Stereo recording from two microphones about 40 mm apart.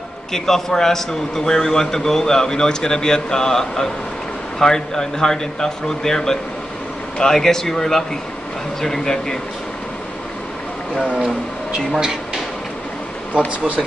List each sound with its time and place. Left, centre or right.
0.3 s a man's voice: centre
11.1 s speech: right
11.9 s speech: centre